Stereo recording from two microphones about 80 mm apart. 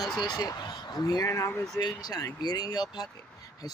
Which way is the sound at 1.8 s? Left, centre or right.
Left.